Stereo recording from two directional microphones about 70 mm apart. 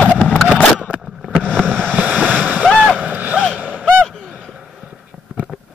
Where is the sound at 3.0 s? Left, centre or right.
Centre.